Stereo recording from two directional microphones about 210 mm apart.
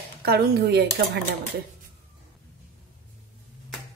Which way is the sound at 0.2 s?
50° right (ahead or behind).